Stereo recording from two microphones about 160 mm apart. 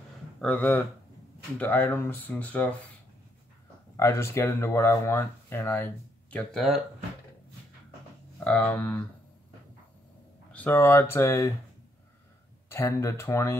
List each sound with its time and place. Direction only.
0.4 s speech: 10° left (ahead or behind)
3.9 s speech: 20° left (ahead or behind)
6.3 s speech: centre (ahead or behind)
8.5 s speech: 10° left (ahead or behind)
10.5 s speech: 10° left (ahead or behind)
12.6 s speech: 15° left (ahead or behind)